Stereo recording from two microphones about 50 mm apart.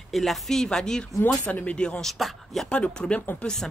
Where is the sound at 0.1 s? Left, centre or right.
Centre.